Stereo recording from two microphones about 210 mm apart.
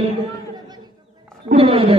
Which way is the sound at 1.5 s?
25° right (ahead or behind).